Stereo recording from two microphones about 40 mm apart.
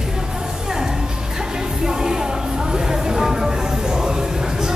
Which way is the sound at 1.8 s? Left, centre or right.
Centre.